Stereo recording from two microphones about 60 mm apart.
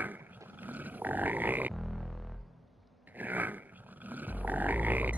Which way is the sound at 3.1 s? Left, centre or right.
Right.